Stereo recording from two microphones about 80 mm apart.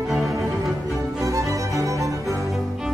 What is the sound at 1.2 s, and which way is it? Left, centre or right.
Music, right.